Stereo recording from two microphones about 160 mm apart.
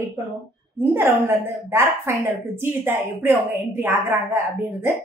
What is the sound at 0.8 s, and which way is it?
A woman's voice, 15° right (ahead or behind).